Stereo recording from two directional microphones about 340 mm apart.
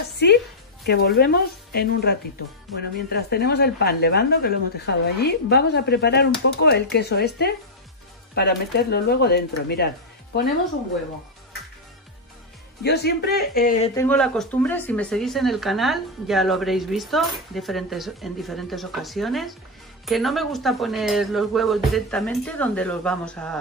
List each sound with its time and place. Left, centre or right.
0.8 s speech: left
12.8 s speech: left
13.9 s speech: centre